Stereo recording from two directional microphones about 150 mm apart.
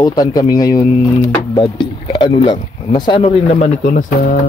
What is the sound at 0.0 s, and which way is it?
Speech, 25° left (ahead or behind).